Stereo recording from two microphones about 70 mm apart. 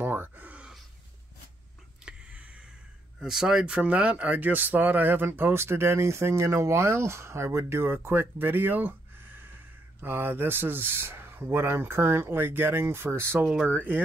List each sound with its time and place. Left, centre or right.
0.0 s gasp: right
2.1 s a sound: centre
3.2 s speech: centre; by 13.5 s right